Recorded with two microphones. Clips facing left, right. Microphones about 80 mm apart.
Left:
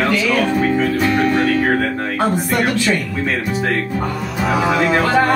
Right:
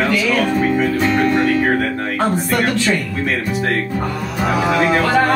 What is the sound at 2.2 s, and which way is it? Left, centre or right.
Speech, centre.